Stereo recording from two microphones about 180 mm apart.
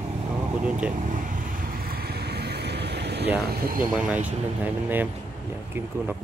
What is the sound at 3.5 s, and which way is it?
Speech, 55° right (ahead or behind).